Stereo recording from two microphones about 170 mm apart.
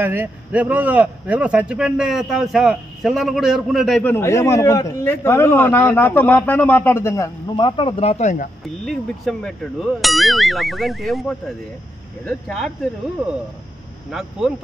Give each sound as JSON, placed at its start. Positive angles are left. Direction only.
{"t": 0.0, "sound": "speech", "side_deg": -10}
{"t": 8.8, "sound": "speech", "side_deg": 5}